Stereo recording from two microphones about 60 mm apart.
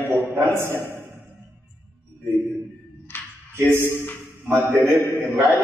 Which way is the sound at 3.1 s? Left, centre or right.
Left.